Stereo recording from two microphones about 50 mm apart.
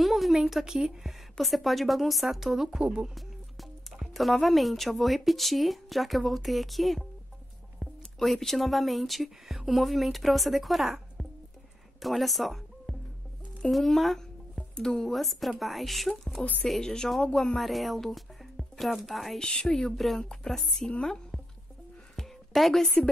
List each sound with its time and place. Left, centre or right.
0.0 s a sound: centre
0.7 s speech: centre
1.4 s a woman's voice: centre
2.8 s speech: centre
3.2 s a woman's voice: centre
17.6 s speech: centre
19.3 s speech: centre
22.1 s a sound: centre